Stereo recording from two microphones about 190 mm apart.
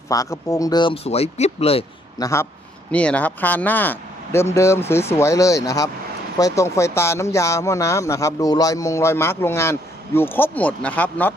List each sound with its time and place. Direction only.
0.1 s speech: 15° left (ahead or behind)
2.1 s a man's voice: 15° left (ahead or behind)
2.9 s speech: 5° left (ahead or behind)